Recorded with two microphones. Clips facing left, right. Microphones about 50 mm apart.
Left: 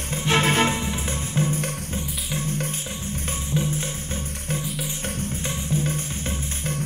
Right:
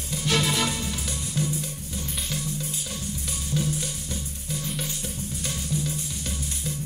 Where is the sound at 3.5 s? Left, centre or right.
Left.